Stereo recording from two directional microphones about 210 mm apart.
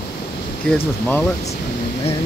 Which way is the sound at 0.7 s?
10° left (ahead or behind).